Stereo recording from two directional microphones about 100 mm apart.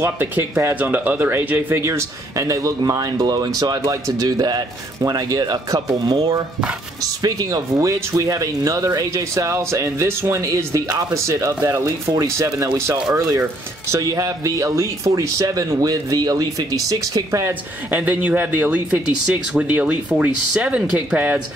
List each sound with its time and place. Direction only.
0.0 s speech: 25° right (ahead or behind)
17.9 s speech: 15° right (ahead or behind)